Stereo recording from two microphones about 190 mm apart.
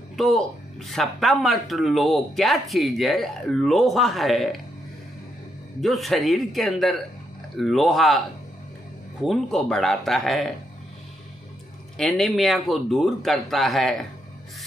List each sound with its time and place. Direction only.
0.1 s speech: centre (ahead or behind)
5.8 s speech: centre (ahead or behind)
9.2 s speech: centre (ahead or behind)
12.0 s speech: centre (ahead or behind)